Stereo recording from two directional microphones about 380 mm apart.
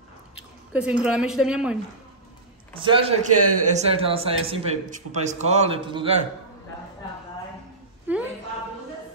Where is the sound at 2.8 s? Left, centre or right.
Centre.